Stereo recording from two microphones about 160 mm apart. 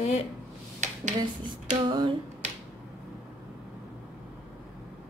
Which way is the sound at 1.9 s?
30° right (ahead or behind).